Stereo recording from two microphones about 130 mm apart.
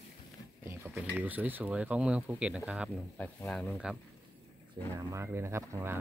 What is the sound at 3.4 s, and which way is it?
Speech, 5° left (ahead or behind).